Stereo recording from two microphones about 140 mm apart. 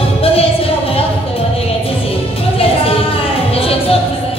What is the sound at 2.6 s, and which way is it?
Music, 40° left (ahead or behind).